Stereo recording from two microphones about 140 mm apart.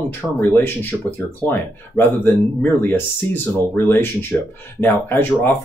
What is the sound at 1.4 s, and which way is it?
Speech, 15° left (ahead or behind).